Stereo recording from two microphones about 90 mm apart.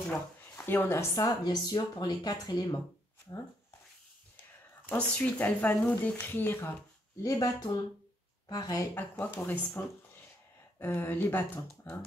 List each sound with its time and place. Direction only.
0.1 s speech: 20° left (ahead or behind)
1.1 s speech: 45° left (ahead or behind)
4.8 s speech: 15° left (ahead or behind)
7.2 s speech: 40° left (ahead or behind)
8.9 s speech: 20° left (ahead or behind)